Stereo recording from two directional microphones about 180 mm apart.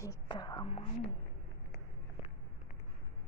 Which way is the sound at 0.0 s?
20° left (ahead or behind).